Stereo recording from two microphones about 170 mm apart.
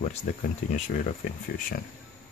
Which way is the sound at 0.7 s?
50° left (ahead or behind).